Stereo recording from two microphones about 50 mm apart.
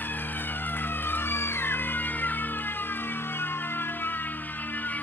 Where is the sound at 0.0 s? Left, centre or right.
Left.